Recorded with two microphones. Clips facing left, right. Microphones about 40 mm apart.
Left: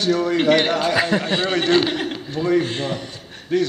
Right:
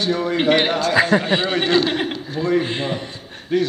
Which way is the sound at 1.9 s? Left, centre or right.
Centre.